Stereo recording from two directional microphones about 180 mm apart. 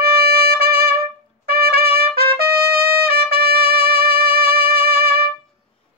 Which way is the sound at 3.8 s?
60° right (ahead or behind).